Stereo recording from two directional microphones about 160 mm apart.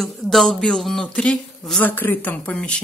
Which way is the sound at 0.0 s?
Centre (ahead or behind).